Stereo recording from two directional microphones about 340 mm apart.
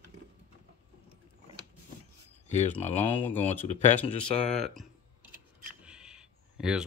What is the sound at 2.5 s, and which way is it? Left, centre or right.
Speech, centre.